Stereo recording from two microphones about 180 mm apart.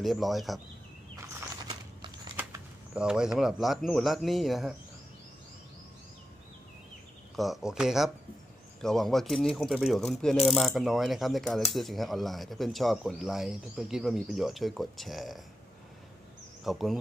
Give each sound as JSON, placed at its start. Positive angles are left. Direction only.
{"t": 0.0, "sound": "speech", "side_deg": 0}
{"t": 1.1, "sound": "a sound", "side_deg": -15}
{"t": 2.3, "sound": "speech", "side_deg": -10}
{"t": 7.3, "sound": "speech", "side_deg": 0}
{"t": 16.6, "sound": "speech", "side_deg": 0}